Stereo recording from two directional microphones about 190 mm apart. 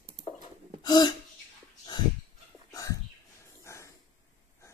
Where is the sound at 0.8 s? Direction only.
20° left (ahead or behind).